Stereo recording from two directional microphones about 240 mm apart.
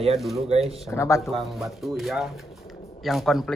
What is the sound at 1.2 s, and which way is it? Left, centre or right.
Speech, centre.